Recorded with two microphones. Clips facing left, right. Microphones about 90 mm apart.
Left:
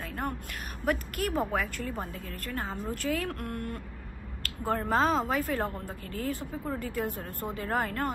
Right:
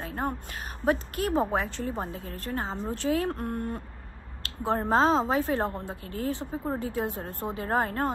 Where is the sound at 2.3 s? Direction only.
40° right (ahead or behind).